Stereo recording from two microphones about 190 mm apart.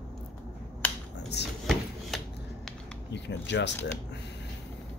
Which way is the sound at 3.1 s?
65° left (ahead or behind).